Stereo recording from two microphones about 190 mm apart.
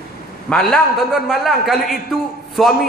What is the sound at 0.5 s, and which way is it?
A man's voice, centre (ahead or behind).